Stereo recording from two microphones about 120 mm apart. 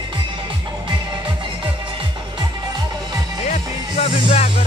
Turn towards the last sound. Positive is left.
turn(degrees=65)  # may be behind; listen again after turning